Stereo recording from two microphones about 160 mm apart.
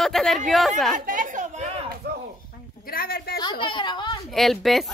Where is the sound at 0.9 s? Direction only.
55° right (ahead or behind).